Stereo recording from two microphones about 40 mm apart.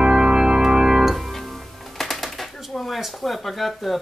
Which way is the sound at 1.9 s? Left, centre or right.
Centre.